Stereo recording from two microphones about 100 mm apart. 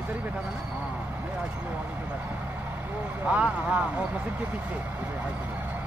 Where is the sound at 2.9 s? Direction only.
15° right (ahead or behind).